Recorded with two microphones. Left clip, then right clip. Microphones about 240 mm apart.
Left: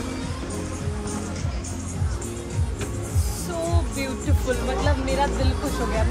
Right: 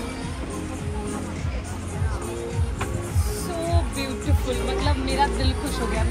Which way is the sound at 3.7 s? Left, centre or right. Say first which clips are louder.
Right 1 dB; centre.